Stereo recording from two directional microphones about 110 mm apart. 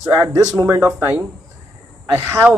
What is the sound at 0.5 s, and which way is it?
Speech, 25° right (ahead or behind).